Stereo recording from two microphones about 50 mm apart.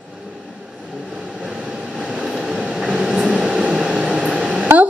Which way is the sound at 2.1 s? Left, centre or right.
Centre.